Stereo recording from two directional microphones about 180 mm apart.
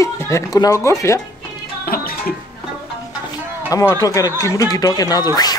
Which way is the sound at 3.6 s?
20° left (ahead or behind).